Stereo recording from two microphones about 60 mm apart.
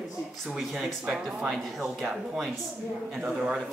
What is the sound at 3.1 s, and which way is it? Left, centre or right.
Speech, centre.